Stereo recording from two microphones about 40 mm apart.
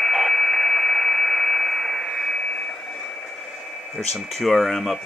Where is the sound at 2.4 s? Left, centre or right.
Left.